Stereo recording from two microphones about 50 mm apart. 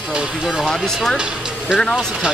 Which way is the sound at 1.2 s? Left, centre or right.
Centre.